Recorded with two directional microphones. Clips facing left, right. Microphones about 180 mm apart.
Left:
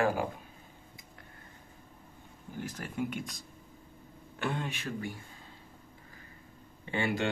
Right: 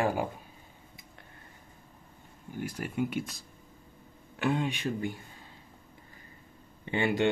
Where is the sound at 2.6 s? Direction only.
10° right (ahead or behind).